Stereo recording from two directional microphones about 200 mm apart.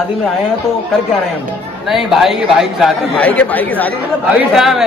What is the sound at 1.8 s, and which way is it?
A man's voice, centre (ahead or behind).